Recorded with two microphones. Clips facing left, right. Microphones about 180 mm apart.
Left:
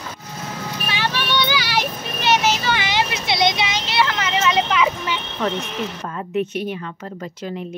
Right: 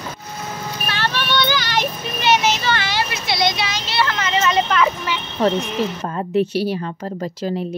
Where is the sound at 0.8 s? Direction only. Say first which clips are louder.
Right 1 dB; 15° left (ahead or behind).